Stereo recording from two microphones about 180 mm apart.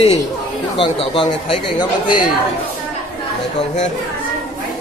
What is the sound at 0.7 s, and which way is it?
Speech, 30° left (ahead or behind).